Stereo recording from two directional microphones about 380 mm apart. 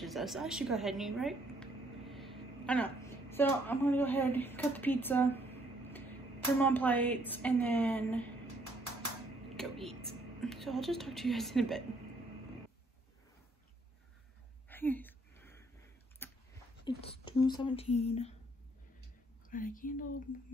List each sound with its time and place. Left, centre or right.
0.0 s speech: centre
6.6 s a woman's voice: centre
9.6 s a woman's voice: centre
14.7 s a sound: centre
16.8 s speech: centre
19.5 s speech: left